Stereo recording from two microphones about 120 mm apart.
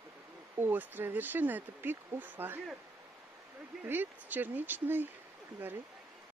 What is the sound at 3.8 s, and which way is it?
Speech, 15° right (ahead or behind).